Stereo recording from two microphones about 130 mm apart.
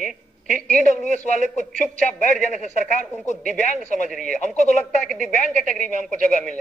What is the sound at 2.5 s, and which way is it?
Speech, 65° left (ahead or behind).